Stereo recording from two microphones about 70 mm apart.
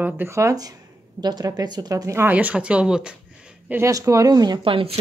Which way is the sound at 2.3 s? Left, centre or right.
Right.